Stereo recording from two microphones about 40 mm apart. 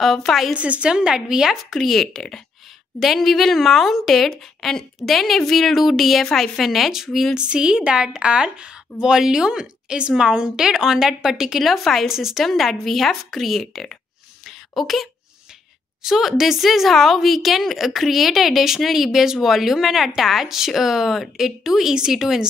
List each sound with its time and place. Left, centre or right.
0.3 s a woman's voice: centre
0.6 s a woman's voice: right
0.8 s speech: centre
1.6 s a woman's voice: centre
4.3 s a woman's voice: centre
7.3 s a woman's voice: right
11.6 s a woman's voice: centre
12.1 s speech: centre
12.4 s a woman's voice: centre